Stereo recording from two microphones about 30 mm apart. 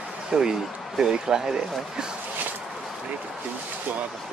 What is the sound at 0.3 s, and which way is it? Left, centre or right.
Speech, right.